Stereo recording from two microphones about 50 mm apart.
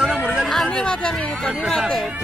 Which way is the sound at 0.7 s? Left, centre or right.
Centre.